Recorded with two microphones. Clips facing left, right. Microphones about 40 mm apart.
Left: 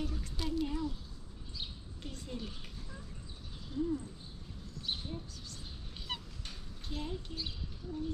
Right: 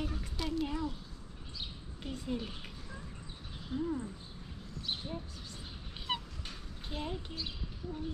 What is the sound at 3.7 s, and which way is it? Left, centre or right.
Speech, right.